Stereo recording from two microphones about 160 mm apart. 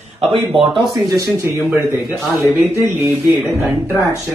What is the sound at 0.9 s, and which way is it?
Speech, 20° right (ahead or behind).